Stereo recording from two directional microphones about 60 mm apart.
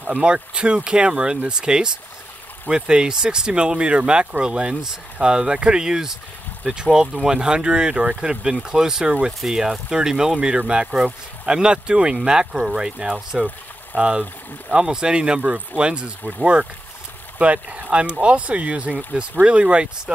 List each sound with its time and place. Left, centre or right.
0.2 s speech: centre
13.1 s speech: right
17.4 s speech: right